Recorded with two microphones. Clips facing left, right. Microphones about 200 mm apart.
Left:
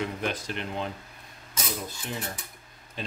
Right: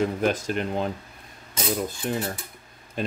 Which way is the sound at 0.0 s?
45° right (ahead or behind).